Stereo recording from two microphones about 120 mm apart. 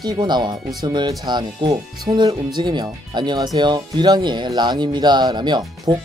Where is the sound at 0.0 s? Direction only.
35° right (ahead or behind).